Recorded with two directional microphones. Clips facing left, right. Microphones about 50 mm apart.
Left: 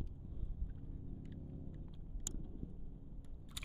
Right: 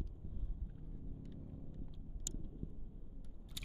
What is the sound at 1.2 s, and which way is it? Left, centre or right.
Rumble, centre.